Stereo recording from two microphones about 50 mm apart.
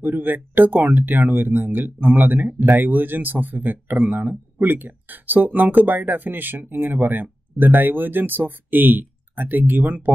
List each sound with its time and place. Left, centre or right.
0.0 s speech: right